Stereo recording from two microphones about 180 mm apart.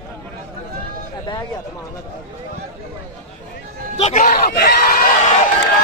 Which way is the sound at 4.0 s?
40° left (ahead or behind).